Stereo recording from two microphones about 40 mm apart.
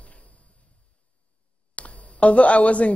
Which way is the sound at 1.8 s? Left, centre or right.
Left.